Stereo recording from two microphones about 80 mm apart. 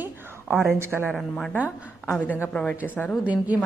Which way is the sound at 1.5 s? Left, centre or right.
Centre.